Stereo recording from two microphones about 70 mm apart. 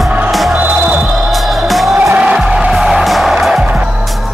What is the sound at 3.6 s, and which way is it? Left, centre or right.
Music, centre.